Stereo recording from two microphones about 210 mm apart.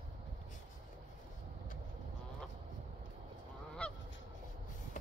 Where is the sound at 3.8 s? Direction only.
5° left (ahead or behind).